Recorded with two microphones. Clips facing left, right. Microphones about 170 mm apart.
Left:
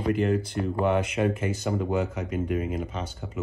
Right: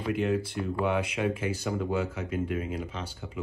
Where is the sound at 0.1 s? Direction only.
Centre (ahead or behind).